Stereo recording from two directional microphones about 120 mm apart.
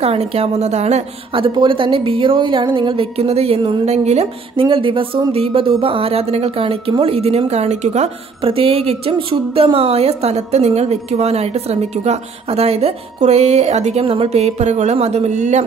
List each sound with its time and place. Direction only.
0.0 s speech: 60° right (ahead or behind)
1.3 s a woman's voice: 45° right (ahead or behind)
3.8 s speech: 70° right (ahead or behind)
4.6 s a woman's voice: 45° right (ahead or behind); by 8.1 s 70° right (ahead or behind)
8.4 s speech: 50° right (ahead or behind); by 15.6 s 75° right (ahead or behind)